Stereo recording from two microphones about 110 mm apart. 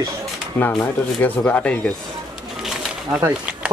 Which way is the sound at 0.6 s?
15° left (ahead or behind).